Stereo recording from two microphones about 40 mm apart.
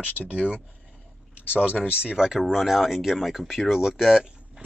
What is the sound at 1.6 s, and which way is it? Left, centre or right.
Speech, right.